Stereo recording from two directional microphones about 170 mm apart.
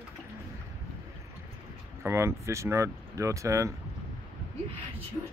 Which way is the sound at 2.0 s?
15° right (ahead or behind).